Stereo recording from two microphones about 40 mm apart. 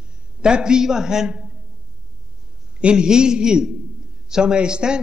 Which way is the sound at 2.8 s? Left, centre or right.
Right.